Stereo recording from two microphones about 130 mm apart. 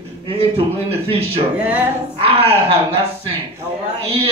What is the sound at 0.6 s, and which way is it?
A man's voice, 50° right (ahead or behind).